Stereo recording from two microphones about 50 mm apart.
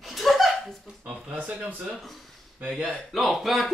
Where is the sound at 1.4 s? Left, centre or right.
Right.